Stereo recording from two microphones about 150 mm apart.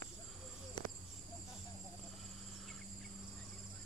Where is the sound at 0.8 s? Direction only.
30° left (ahead or behind).